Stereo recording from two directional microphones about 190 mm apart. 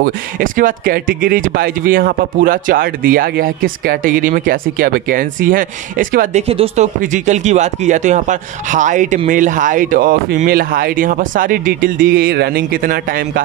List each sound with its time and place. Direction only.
0.0 s speech: 45° right (ahead or behind)
6.4 s speech: 30° right (ahead or behind); by 13.4 s 50° right (ahead or behind)